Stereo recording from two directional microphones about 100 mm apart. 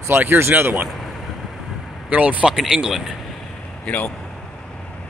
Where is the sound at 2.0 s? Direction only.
15° right (ahead or behind).